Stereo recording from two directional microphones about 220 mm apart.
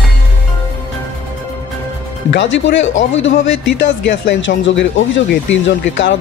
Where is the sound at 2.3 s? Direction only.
55° left (ahead or behind).